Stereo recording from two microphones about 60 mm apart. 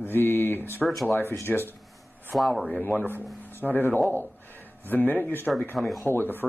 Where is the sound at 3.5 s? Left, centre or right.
Left.